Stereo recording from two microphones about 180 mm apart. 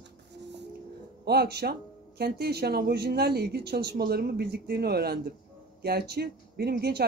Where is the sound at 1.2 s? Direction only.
65° right (ahead or behind).